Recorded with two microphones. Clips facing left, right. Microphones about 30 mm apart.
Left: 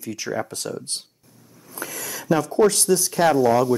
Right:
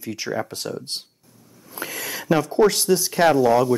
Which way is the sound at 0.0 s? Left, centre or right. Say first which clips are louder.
Even; right.